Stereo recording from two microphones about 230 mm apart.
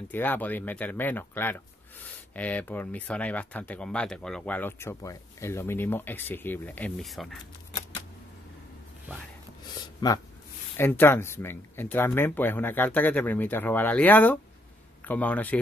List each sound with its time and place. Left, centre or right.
0.1 s speech: centre
10.0 s speech: centre